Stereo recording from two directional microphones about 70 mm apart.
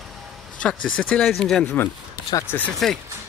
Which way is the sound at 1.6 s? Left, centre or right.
Left.